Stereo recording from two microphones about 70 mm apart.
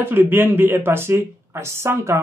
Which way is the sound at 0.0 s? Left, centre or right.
Right.